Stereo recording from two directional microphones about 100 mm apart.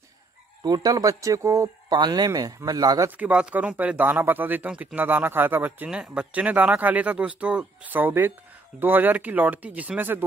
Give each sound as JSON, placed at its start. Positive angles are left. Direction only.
{"t": 0.7, "sound": "speech", "side_deg": -40}
{"t": 1.9, "sound": "speech", "side_deg": -45}
{"t": 3.2, "sound": "speech", "side_deg": -10}